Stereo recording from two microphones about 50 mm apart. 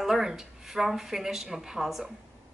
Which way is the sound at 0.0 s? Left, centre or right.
Centre.